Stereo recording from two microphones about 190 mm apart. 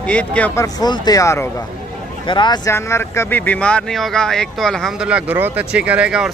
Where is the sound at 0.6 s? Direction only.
20° left (ahead or behind).